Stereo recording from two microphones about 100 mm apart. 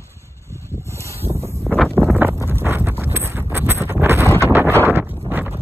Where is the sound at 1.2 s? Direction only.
30° right (ahead or behind).